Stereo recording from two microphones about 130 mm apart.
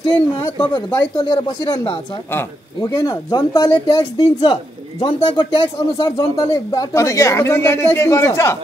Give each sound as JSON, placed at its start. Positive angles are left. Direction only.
{"t": 0.7, "sound": "speech", "side_deg": 35}
{"t": 6.1, "sound": "speech", "side_deg": 25}